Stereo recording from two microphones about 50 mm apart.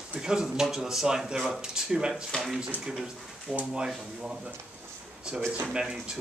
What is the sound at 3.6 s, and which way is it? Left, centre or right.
Speech, centre.